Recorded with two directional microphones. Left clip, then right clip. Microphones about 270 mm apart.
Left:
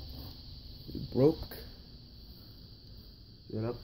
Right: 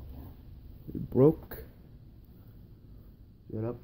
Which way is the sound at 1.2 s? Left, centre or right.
Right.